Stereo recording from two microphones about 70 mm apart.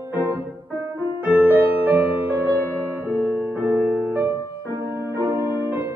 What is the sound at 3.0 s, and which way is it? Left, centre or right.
Music, right.